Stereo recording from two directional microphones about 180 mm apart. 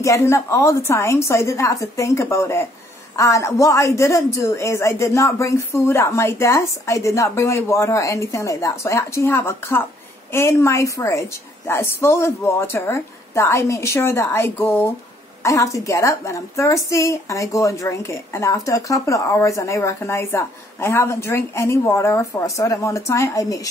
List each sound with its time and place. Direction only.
0.0 s a woman's voice: 15° left (ahead or behind)